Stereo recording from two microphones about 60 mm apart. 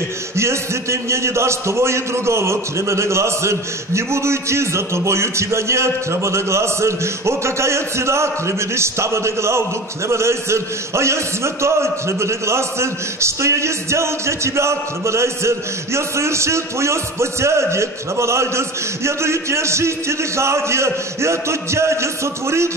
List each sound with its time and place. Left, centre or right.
0.4 s a man's voice: right